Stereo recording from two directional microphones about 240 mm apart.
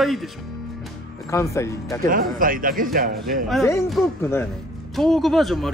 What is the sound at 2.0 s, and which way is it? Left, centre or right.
Speech, right.